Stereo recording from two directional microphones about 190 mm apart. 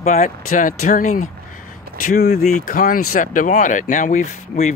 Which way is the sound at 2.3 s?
40° left (ahead or behind).